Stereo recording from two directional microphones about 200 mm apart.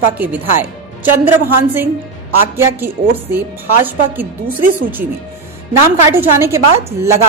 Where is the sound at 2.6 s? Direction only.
10° right (ahead or behind).